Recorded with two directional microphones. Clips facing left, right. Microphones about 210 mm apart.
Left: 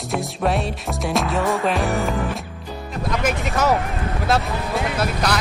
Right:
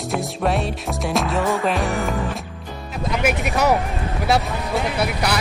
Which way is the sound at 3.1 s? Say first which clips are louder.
Right 1 dB; 10° right (ahead or behind).